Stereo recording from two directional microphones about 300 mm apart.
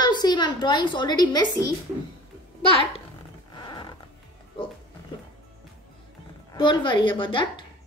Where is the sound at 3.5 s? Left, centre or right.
Centre.